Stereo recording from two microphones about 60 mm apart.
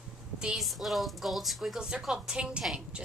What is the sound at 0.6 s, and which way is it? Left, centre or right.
A woman's voice, centre.